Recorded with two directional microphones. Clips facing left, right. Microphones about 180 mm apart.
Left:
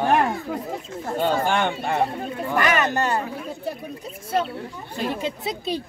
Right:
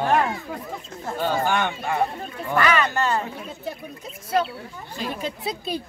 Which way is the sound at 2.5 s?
20° left (ahead or behind).